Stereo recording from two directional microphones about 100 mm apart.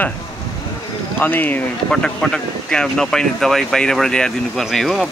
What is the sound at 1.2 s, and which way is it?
Speech, 20° left (ahead or behind).